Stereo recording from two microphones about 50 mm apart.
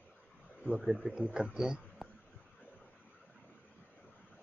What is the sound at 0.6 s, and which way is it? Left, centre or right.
A man's voice, centre.